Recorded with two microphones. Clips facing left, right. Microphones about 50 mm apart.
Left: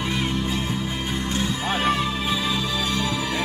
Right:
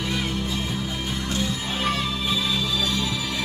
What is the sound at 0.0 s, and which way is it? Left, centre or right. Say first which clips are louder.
Music: left 2 dB; left.